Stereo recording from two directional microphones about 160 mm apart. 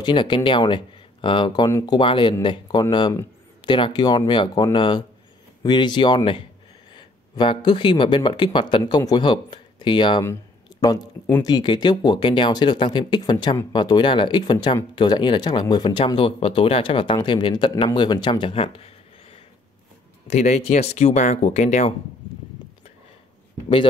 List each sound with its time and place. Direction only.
0.0 s speech: 30° left (ahead or behind)
1.7 s speech: 20° left (ahead or behind)
2.0 s speech: 30° left (ahead or behind)
20.2 s speech: 45° left (ahead or behind)